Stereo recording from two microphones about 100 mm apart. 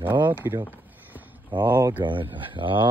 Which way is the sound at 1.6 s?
25° right (ahead or behind).